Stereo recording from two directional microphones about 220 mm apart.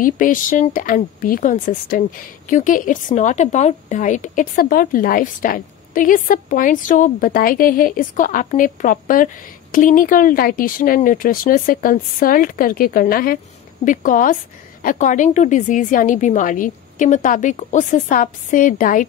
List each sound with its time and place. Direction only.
0.0 s a woman's voice: 35° left (ahead or behind)